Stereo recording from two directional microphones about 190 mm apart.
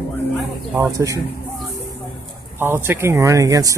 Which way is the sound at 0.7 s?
15° right (ahead or behind).